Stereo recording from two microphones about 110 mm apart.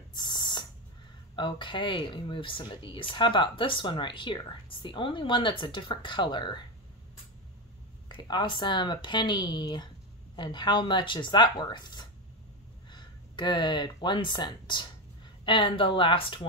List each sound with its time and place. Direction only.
0.1 s spray: 40° left (ahead or behind)
1.3 s speech: 45° left (ahead or behind)
8.1 s speech: 45° left (ahead or behind)